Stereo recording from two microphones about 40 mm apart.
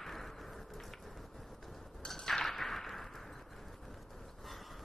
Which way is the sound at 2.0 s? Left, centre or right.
Centre.